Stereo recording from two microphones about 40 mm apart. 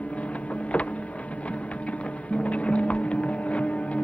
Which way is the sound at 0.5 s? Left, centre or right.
Left.